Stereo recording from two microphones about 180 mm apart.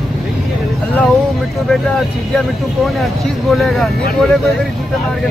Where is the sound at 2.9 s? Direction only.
Centre (ahead or behind).